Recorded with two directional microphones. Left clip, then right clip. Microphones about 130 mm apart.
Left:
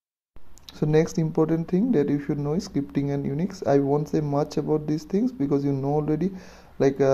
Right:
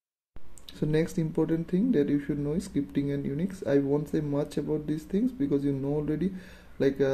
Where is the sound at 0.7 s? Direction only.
40° left (ahead or behind).